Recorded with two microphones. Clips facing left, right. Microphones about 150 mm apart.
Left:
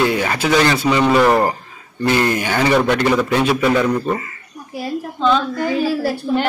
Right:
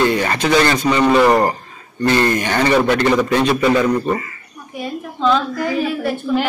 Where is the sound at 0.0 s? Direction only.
5° left (ahead or behind).